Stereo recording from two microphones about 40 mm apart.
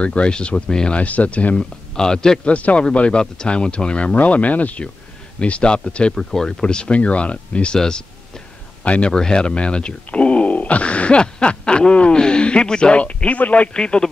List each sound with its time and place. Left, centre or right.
0.0 s speech: left
0.9 s speech: left
1.6 s speech: centre
2.4 s speech: left
5.4 s speech: left
6.1 s speech: centre
6.6 s speech: left
8.8 s speech: left
9.1 s speech: centre
12.9 s speech: left
13.7 s speech: left